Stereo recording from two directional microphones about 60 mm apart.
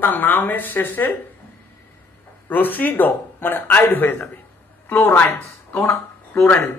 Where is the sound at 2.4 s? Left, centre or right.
Left.